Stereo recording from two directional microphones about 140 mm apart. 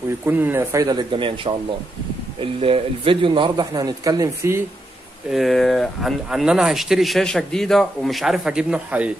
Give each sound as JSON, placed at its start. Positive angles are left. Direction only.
{"t": 0.2, "sound": "a man's voice", "side_deg": -15}
{"t": 5.3, "sound": "speech", "side_deg": 0}